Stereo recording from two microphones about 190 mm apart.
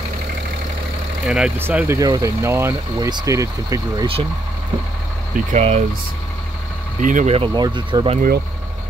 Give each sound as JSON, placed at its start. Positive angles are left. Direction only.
{"t": 1.2, "sound": "speech", "side_deg": -5}
{"t": 5.5, "sound": "speech", "side_deg": -35}
{"t": 7.0, "sound": "speech", "side_deg": -45}
{"t": 7.3, "sound": "speech", "side_deg": -25}